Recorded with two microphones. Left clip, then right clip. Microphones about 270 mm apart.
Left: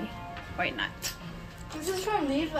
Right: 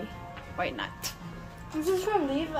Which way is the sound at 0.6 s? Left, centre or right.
Centre.